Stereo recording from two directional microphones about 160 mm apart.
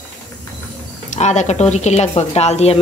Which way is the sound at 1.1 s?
45° left (ahead or behind).